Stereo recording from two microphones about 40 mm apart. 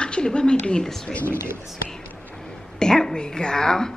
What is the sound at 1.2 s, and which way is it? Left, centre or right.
Speech, right.